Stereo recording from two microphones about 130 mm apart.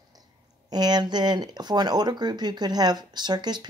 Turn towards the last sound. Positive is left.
turn(degrees=-35)  # may be behind; listen again after turning